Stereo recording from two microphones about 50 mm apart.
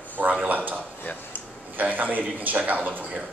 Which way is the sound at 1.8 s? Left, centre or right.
Right.